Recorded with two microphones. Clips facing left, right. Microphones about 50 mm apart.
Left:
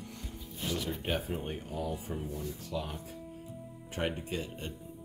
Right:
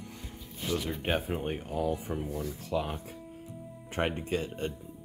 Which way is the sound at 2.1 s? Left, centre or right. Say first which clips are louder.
Right 4 dB; right.